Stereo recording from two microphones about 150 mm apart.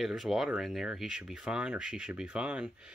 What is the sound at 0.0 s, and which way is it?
Speech, centre (ahead or behind).